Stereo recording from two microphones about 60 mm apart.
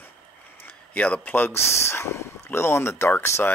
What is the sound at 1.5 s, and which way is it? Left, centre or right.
Speech, left.